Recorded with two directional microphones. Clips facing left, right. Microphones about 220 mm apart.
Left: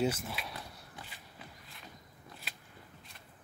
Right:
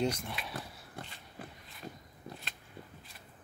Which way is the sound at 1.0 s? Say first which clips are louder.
Right 6 dB; 50° right (ahead or behind).